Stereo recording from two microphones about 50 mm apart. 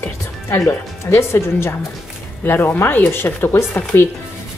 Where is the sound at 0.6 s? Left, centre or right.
Left.